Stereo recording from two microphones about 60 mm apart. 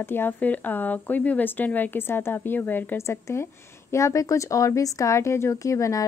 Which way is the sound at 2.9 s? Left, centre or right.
Left.